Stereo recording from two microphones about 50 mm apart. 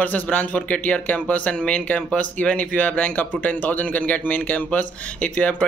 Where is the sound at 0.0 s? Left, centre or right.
Left.